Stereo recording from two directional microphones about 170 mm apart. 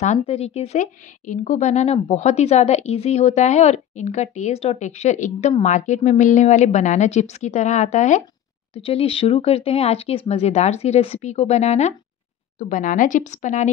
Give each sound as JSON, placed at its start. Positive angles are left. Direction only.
{"t": 0.0, "sound": "a woman's voice", "side_deg": 40}
{"t": 8.7, "sound": "a woman's voice", "side_deg": 35}